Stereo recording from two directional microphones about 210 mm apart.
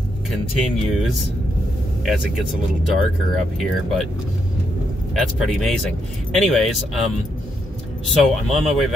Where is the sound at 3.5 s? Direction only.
Centre (ahead or behind).